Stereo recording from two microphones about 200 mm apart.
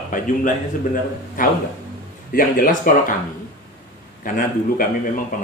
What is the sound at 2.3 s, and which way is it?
Speech, 40° left (ahead or behind).